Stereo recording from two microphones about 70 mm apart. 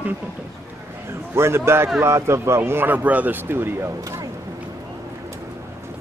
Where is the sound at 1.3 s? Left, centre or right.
Right.